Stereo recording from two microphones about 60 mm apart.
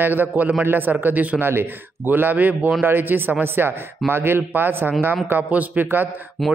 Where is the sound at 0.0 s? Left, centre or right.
Right.